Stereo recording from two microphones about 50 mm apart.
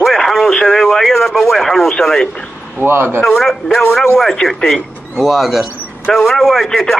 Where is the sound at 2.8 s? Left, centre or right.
Right.